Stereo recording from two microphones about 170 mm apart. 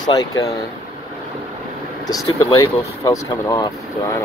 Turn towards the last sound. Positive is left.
turn(degrees=20)  # may be behind; listen again after turning